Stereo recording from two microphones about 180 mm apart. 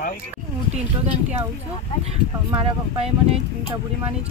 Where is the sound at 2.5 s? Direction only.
30° right (ahead or behind).